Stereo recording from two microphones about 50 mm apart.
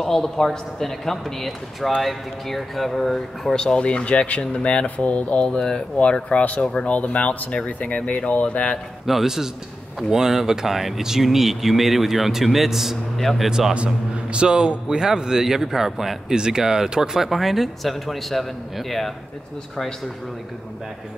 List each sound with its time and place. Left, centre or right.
0.0 s speech: centre
3.5 s speech: centre
9.0 s a man's voice: centre
13.5 s a man's voice: centre